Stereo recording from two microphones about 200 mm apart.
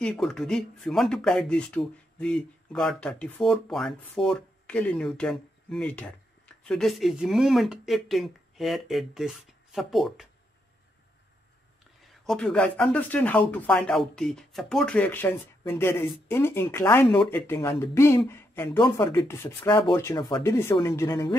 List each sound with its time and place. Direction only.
0.0 s speech: centre (ahead or behind)
12.3 s speech: 5° left (ahead or behind)